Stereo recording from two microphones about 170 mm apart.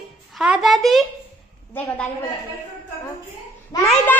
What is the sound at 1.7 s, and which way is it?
Speech, 10° left (ahead or behind).